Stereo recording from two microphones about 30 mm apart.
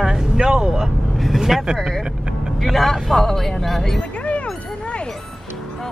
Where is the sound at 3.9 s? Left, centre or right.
Left.